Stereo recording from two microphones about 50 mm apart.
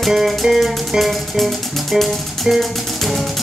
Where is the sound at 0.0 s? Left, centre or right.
Centre.